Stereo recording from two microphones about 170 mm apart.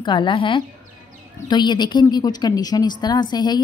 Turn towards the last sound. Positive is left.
turn(degrees=25)  # may be behind; listen again after turning